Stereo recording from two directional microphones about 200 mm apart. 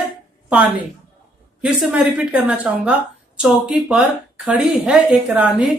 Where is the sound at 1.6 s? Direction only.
5° right (ahead or behind).